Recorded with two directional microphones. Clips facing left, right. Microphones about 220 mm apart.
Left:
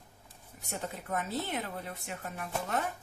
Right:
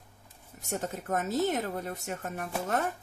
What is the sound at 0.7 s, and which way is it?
Speech, 45° right (ahead or behind).